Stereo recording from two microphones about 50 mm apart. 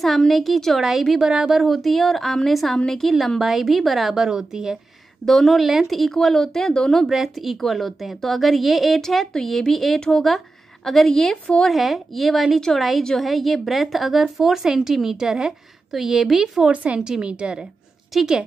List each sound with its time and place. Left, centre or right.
0.0 s a woman's voice: centre
1.1 s a woman's voice: centre
1.5 s a woman's voice: centre
5.2 s a woman's voice: centre
7.1 s a woman's voice: centre
9.9 s a woman's voice: centre
10.2 s a woman's voice: centre
12.5 s a woman's voice: centre
13.2 s a woman's voice: centre
16.6 s a woman's voice: right
18.1 s a woman's voice: centre